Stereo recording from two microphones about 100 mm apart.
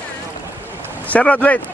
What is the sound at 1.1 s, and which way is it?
Speech, 15° left (ahead or behind).